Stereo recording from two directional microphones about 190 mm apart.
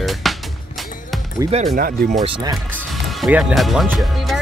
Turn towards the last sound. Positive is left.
turn(degrees=0)  # may be behind; listen again after turning